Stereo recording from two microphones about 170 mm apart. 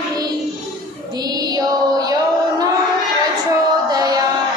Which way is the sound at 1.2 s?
25° right (ahead or behind).